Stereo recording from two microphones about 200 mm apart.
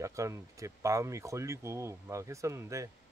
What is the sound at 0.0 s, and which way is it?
Speech, 15° right (ahead or behind).